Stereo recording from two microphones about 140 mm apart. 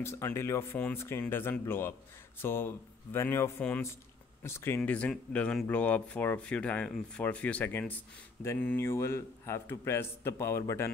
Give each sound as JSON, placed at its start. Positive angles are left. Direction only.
{"t": 0.0, "sound": "a man's voice", "side_deg": 20}